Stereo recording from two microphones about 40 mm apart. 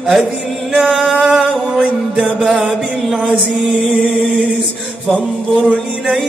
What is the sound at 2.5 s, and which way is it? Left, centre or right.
Chant, centre.